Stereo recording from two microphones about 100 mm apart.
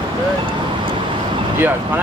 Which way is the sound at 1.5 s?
20° right (ahead or behind).